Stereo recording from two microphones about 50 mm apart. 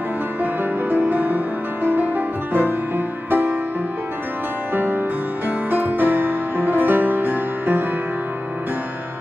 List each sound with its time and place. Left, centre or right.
0.4 s music: right
4.7 s music: right